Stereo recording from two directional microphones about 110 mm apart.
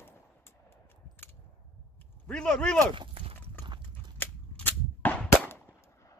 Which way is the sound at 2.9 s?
55° right (ahead or behind).